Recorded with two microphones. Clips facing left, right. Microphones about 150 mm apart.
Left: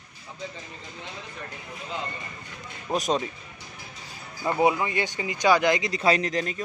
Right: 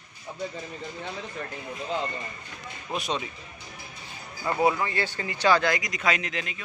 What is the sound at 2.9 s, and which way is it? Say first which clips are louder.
Speech: left 5 dB; 40° left (ahead or behind).